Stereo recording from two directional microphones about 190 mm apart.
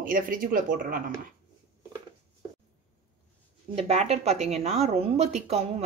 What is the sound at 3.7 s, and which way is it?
Speech, 35° right (ahead or behind).